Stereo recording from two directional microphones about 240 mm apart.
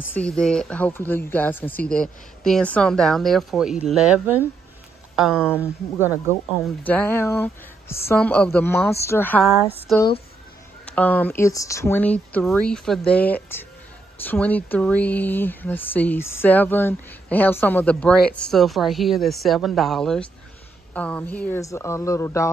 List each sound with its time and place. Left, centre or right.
0.1 s speech: centre
6.8 s speech: centre
9.9 s speech: centre
10.9 s speech: centre